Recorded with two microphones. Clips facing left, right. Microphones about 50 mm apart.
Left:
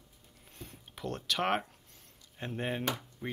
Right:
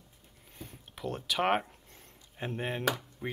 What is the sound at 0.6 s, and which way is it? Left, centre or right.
Speech, centre.